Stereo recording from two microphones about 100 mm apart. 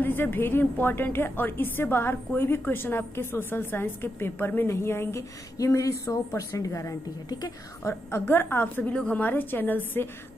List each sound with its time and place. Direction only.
0.0 s a woman's voice: 20° left (ahead or behind); by 7.5 s 40° left (ahead or behind)
7.9 s a woman's voice: 20° left (ahead or behind)